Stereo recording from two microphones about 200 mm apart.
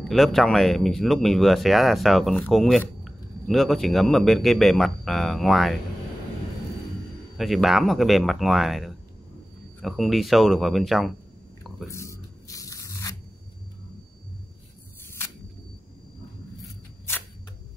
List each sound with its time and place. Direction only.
0.0 s speech: centre (ahead or behind)
7.3 s speech: centre (ahead or behind)
11.9 s a sound: 15° left (ahead or behind)
17.1 s camera: 15° left (ahead or behind)